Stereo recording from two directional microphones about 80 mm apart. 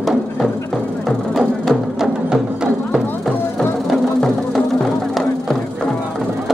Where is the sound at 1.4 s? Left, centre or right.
Centre.